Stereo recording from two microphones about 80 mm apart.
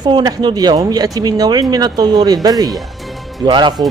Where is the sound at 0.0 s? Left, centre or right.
Right.